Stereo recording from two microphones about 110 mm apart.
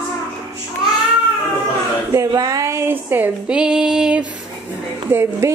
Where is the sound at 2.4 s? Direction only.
30° right (ahead or behind); by 4.2 s 5° right (ahead or behind).